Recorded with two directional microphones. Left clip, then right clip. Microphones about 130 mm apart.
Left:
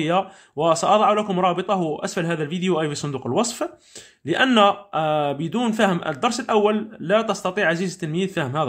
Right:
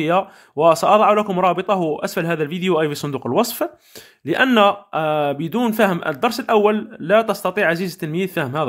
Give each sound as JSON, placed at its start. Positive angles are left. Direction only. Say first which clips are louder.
{"t": 0.0, "sound": "a man's voice", "louder": "right 3 dB", "side_deg": -40}